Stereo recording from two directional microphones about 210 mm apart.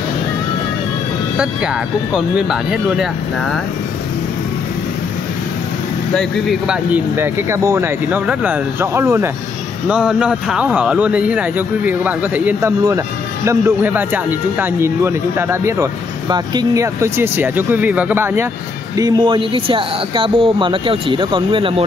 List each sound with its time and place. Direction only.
1.4 s speech: 5° right (ahead or behind)
6.7 s speech: 10° right (ahead or behind)